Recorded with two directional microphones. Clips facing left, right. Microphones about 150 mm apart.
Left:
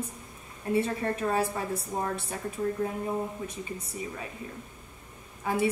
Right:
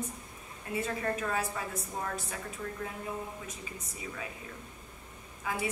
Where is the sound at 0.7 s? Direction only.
30° left (ahead or behind).